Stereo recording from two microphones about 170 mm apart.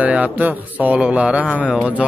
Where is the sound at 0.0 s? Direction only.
10° right (ahead or behind).